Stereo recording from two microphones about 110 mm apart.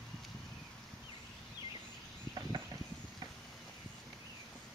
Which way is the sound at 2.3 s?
40° right (ahead or behind).